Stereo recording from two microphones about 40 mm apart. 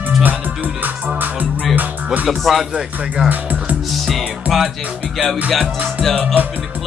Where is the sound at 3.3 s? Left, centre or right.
Right.